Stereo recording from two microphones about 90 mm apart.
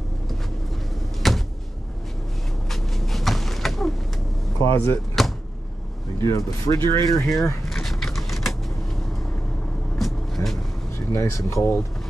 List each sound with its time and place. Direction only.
1.2 s a sound: centre (ahead or behind)
2.7 s a sound: centre (ahead or behind)
4.6 s speech: 35° left (ahead or behind)
5.2 s vehicle: 5° left (ahead or behind)
6.2 s speech: 35° left (ahead or behind)
7.2 s vehicle: 5° left (ahead or behind)
9.9 s vehicle: centre (ahead or behind)
11.1 s speech: 35° left (ahead or behind)